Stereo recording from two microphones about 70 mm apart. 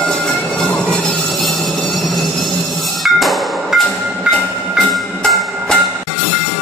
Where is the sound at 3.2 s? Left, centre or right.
Centre.